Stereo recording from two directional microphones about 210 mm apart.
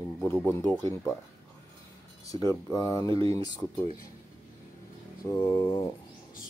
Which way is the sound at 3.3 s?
15° left (ahead or behind).